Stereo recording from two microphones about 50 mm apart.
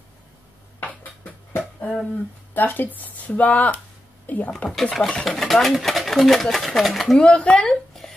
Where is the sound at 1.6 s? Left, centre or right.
Left.